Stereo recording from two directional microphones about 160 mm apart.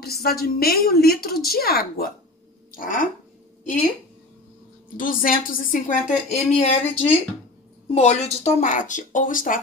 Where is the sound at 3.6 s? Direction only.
55° left (ahead or behind).